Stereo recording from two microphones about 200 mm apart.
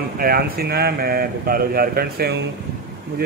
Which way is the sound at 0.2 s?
50° right (ahead or behind).